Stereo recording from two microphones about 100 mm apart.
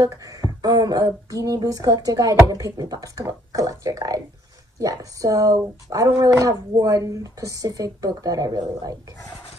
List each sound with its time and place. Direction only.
0.0 s speech: 35° right (ahead or behind)